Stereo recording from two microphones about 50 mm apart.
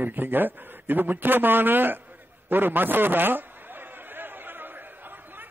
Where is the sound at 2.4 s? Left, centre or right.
Right.